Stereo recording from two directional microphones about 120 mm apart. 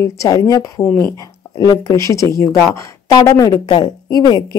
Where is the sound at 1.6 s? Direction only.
35° left (ahead or behind).